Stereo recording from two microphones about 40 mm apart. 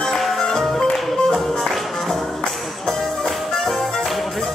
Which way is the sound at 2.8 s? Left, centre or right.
Centre.